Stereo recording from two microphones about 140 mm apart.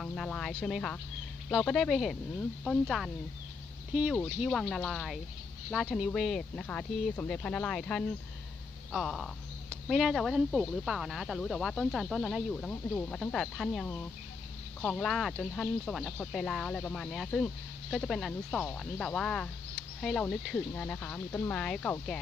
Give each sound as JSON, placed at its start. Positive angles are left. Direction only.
{"t": 0.0, "sound": "speech", "side_deg": 5}
{"t": 4.5, "sound": "speech", "side_deg": 5}